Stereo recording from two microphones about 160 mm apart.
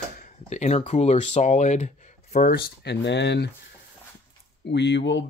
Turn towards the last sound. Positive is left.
turn(degrees=90)